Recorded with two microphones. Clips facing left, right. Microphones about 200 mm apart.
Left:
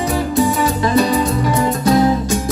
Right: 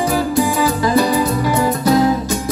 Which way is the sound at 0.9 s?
25° left (ahead or behind).